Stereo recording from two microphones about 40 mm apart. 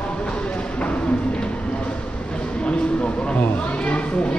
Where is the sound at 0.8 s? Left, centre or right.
Left.